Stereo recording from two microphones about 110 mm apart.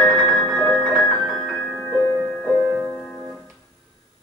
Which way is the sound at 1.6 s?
15° left (ahead or behind).